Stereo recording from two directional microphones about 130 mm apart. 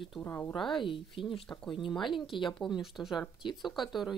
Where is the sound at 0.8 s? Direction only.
40° left (ahead or behind).